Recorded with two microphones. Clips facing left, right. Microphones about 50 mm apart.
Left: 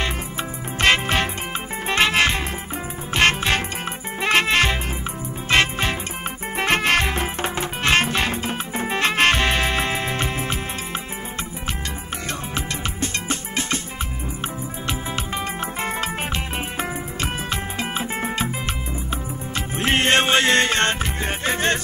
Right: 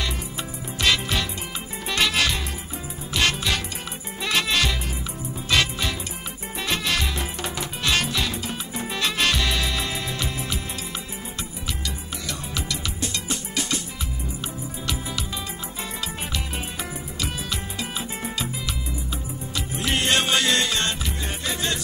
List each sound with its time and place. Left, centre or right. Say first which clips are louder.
0.0 s music: left 4 dB; left
12.3 s music: left 2 dB; left
14.9 s music: left 4 dB; left
19.5 s music: left 5 dB; left